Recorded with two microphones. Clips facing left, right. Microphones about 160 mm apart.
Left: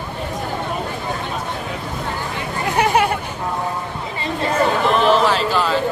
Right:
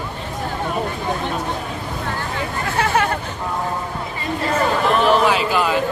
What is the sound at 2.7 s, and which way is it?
Chatter, 15° left (ahead or behind).